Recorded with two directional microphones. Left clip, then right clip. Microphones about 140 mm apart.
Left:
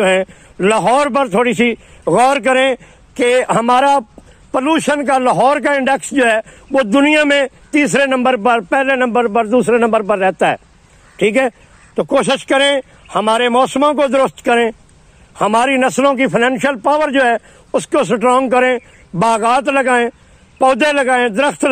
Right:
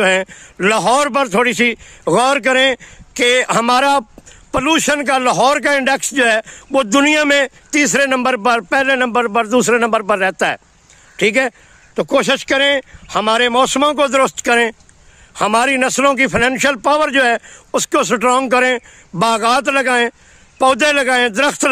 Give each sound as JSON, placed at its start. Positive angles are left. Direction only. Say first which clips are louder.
{"t": 0.0, "sound": "a man's voice", "louder": "left 1 dB", "side_deg": -35}